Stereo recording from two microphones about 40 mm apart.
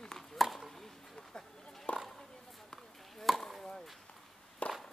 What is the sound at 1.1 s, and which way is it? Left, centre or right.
Speech, centre.